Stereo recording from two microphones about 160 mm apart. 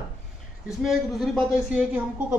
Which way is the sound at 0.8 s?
Centre (ahead or behind).